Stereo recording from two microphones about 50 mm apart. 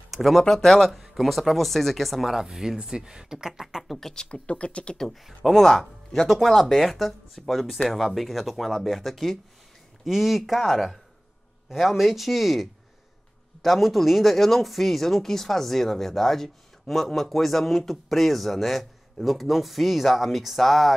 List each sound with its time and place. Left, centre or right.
0.1 s speech: centre
4.1 s speech: centre
5.6 s speech: centre
11.7 s speech: centre